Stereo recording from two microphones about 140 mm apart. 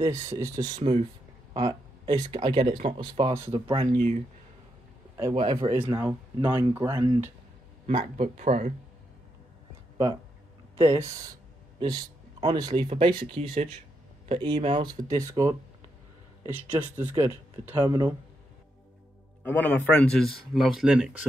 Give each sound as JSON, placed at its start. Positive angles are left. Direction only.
{"t": 0.0, "sound": "speech", "side_deg": -20}
{"t": 5.5, "sound": "speech", "side_deg": -30}
{"t": 5.9, "sound": "speech", "side_deg": -15}
{"t": 7.8, "sound": "speech", "side_deg": -55}
{"t": 10.8, "sound": "speech", "side_deg": -20}
{"t": 11.8, "sound": "a man's voice", "side_deg": -35}
{"t": 12.8, "sound": "speech", "side_deg": -40}
{"t": 17.8, "sound": "speech", "side_deg": -25}
{"t": 19.4, "sound": "a man's voice", "side_deg": 10}